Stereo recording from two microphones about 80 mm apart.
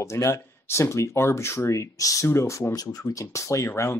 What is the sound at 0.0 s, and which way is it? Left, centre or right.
Speech, left.